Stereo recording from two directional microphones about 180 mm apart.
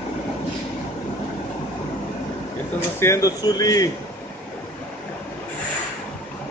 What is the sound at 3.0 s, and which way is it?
Speech, 15° left (ahead or behind).